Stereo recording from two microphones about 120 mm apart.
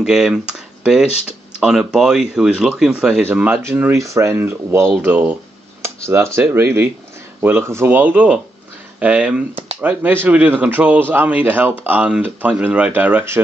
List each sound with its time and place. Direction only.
0.0 s speech: 5° right (ahead or behind)
3.3 s speech: 15° right (ahead or behind)
5.8 s a sound: 25° right (ahead or behind)
6.4 s speech: 20° right (ahead or behind)